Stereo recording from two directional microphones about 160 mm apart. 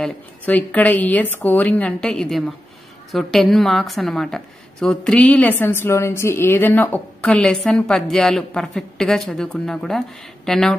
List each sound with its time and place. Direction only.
0.0 s a woman's voice: 10° left (ahead or behind)